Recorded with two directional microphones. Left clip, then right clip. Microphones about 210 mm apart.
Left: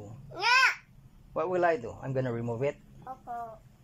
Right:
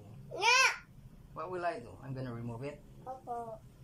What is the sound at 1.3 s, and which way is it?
Speech, 35° left (ahead or behind).